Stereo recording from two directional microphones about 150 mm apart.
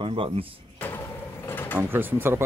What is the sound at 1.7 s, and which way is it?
Speech, 15° right (ahead or behind).